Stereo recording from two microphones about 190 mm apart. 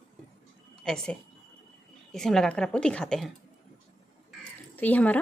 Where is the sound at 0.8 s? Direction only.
5° left (ahead or behind).